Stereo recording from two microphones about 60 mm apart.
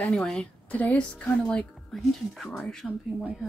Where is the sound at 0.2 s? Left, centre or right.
Centre.